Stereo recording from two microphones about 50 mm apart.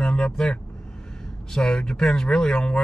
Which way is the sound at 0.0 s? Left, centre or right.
Centre.